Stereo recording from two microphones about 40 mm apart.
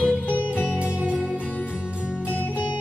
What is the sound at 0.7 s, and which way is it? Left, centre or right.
Music, right.